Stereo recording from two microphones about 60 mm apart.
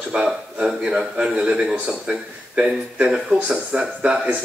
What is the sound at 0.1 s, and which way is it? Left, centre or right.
A man's voice, centre.